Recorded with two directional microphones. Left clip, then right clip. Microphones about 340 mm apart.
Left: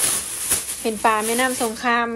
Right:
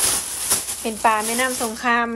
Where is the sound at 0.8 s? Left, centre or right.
Centre.